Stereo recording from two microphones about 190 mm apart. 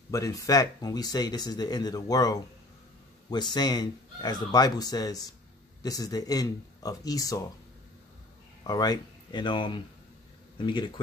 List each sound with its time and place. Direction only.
0.1 s speech: 15° left (ahead or behind)
8.6 s speech: 20° left (ahead or behind)